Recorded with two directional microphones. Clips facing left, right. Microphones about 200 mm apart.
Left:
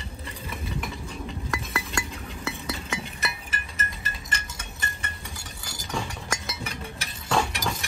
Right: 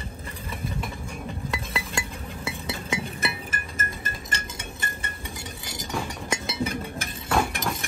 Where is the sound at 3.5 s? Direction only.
50° right (ahead or behind).